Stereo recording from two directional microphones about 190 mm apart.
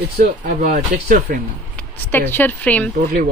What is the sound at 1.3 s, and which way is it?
Speech, 50° right (ahead or behind).